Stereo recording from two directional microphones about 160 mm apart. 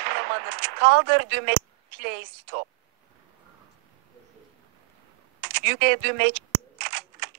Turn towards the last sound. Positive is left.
turn(degrees=-90)